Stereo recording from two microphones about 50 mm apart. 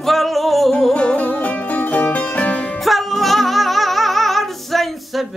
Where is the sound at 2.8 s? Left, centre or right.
Centre.